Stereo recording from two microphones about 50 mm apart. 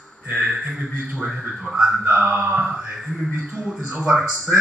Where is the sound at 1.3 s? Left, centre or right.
Centre.